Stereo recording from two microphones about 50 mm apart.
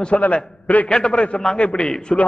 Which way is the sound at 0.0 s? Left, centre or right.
Left.